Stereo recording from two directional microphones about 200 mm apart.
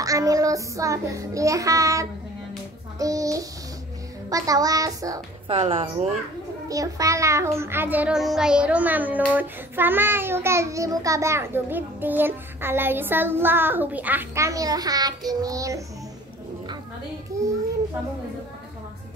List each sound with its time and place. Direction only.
0.0 s child singing: 15° right (ahead or behind)
3.0 s a child's voice: 15° right (ahead or behind)
5.5 s speech: 30° right (ahead or behind)
6.7 s a child's voice: 15° right (ahead or behind)